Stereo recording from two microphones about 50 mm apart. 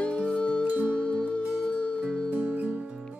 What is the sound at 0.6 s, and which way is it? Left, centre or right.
Music, right.